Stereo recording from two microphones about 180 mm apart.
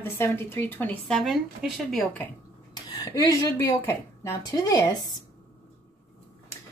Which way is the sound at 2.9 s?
25° left (ahead or behind).